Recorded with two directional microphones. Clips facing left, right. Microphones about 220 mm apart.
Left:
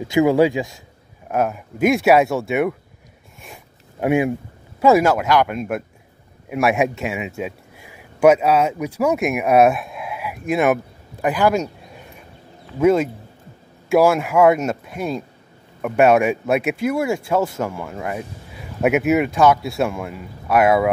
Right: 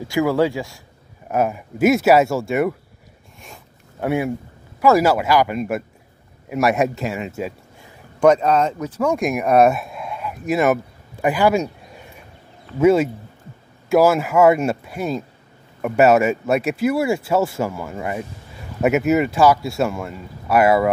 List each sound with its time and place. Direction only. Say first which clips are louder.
0.1 s speech: left 3 dB; 20° left (ahead or behind)
1.3 s speech: right 1 dB; 5° right (ahead or behind)
4.0 s speech: left 3 dB; 15° left (ahead or behind)
4.9 s speech: even; 5° right (ahead or behind)
12.7 s speech: right 1 dB; 5° right (ahead or behind)